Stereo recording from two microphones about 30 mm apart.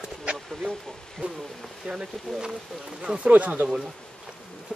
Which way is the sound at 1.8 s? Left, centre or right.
Right.